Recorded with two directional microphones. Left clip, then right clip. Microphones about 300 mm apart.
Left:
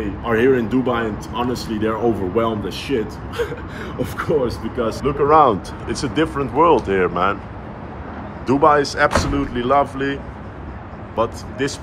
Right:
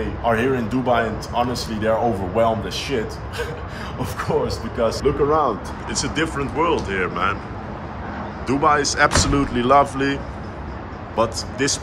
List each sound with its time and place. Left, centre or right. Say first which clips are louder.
0.3 s a man's voice: left 4 dB; centre
5.3 s speech: left 10 dB; left
5.9 s speech: left 3 dB; centre
8.5 s a man's voice: left 3 dB; centre